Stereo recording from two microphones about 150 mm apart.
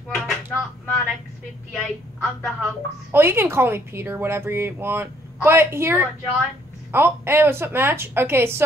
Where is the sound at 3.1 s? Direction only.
15° right (ahead or behind).